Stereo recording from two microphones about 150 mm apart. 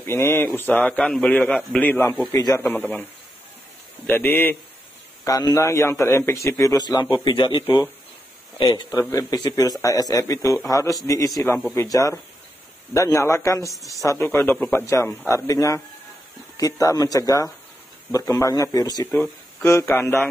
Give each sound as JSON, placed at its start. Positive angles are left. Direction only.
{"t": 0.0, "sound": "a man's voice", "side_deg": 15}
{"t": 4.1, "sound": "a man's voice", "side_deg": 15}
{"t": 8.6, "sound": "a man's voice", "side_deg": 25}